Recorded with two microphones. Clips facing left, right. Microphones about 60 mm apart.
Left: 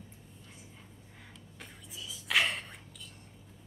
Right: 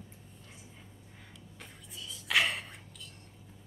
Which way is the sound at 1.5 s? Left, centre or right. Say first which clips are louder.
Left 1 dB; centre.